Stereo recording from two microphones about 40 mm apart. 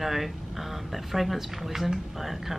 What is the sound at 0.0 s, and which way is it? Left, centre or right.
Speech, centre.